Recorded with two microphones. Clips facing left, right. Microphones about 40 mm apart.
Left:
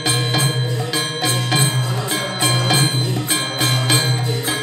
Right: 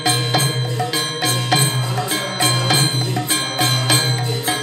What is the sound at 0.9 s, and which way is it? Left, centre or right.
Music, centre.